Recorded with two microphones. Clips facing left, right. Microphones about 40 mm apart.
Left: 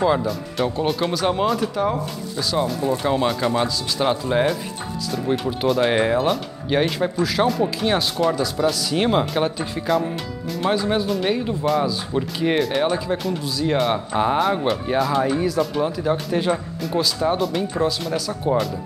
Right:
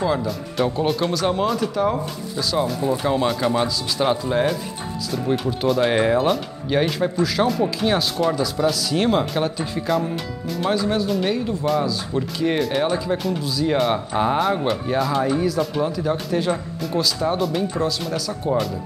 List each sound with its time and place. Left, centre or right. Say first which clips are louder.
0.0 s speech: left 3 dB; centre
0.3 s speech: right 1 dB; centre
10.7 s speech: even; centre
12.5 s speech: left 2 dB; centre